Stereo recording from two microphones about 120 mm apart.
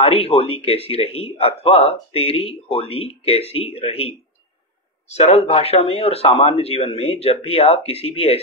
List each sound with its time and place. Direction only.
0.0 s a man's voice: 55° left (ahead or behind)